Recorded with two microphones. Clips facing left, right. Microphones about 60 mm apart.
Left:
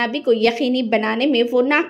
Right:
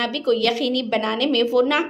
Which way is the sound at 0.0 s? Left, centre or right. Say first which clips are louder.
Left 4 dB; left.